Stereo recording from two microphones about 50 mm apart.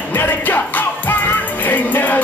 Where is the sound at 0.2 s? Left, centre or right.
Left.